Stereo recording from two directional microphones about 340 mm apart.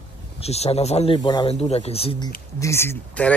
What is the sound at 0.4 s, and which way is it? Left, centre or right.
Speech, centre.